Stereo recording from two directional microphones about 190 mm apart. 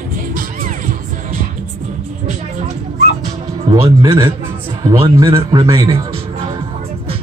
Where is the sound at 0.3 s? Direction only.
45° right (ahead or behind).